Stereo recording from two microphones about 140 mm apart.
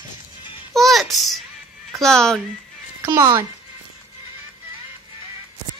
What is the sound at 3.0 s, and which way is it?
Speech, 20° right (ahead or behind).